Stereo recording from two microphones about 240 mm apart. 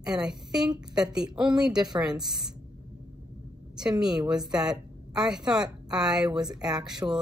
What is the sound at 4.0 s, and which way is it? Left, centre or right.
Speech, centre.